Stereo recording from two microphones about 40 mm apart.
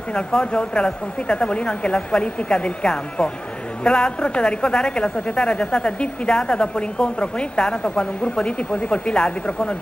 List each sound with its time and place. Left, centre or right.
0.1 s a woman's voice: left